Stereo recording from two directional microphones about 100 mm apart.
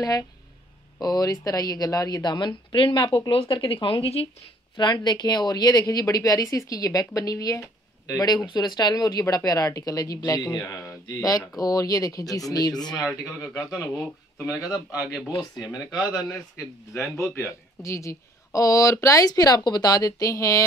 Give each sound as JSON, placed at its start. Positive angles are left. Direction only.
{"t": 0.0, "sound": "speech", "side_deg": 40}
{"t": 4.7, "sound": "speech", "side_deg": 50}